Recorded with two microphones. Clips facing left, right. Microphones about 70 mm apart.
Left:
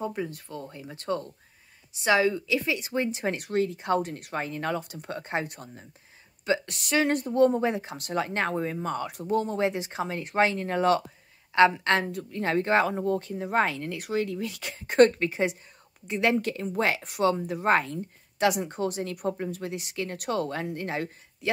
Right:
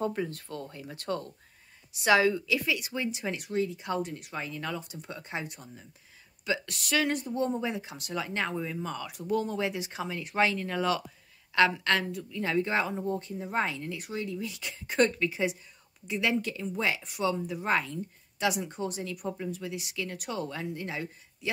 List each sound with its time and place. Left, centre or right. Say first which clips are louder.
0.0 s speech: even; centre
0.3 s speech: left 1 dB; left
6.4 s speech: left 5 dB; left
6.7 s speech: left 3 dB; left
7.1 s speech: left 7 dB; left
11.5 s speech: left 4 dB; left
12.1 s speech: left 3 dB; left